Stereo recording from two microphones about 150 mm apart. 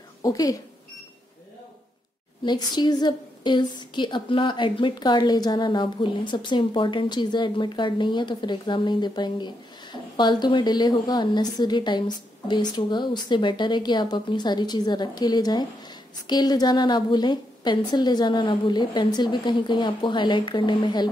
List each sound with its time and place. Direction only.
0.2 s speech: 25° left (ahead or behind)
2.4 s a woman's voice: 30° left (ahead or behind)